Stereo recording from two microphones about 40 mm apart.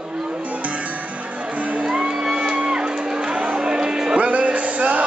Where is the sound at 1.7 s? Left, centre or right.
Right.